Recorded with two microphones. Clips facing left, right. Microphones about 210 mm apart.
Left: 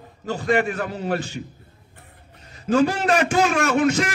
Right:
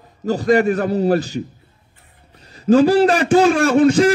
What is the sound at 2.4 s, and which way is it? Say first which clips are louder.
A man's voice: right 6 dB; 35° right (ahead or behind).